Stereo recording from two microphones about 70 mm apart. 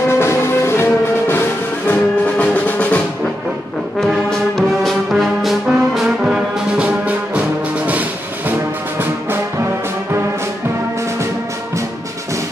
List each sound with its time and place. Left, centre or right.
0.1 s music: left
1.9 s music: left
4.0 s brass instrument: centre
6.8 s music: right